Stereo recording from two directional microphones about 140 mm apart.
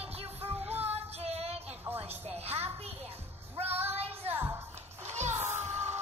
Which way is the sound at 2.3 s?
45° right (ahead or behind).